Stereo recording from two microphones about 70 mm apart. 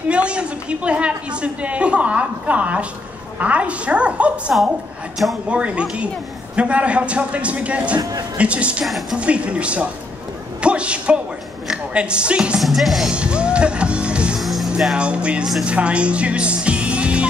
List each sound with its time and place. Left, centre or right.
0.1 s a woman's voice: centre
8.0 s a man's voice: right
8.4 s a woman's voice: centre
12.5 s music: centre
13.1 s music: centre
14.4 s music: centre
15.0 s a woman's voice: centre